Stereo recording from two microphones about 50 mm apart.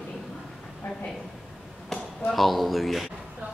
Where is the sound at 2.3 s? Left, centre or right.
Centre.